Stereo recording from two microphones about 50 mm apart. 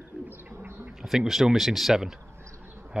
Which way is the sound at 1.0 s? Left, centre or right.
Centre.